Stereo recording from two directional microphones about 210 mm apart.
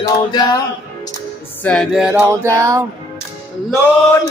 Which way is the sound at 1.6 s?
5° left (ahead or behind).